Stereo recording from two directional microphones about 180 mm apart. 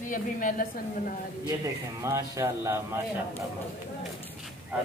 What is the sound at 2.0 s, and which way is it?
Speech, 15° right (ahead or behind).